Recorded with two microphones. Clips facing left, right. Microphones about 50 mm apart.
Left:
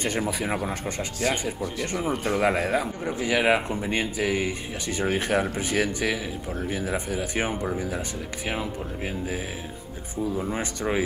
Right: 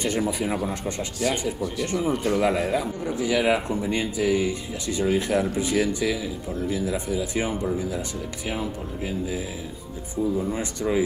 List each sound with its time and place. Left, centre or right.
0.0 s speech: left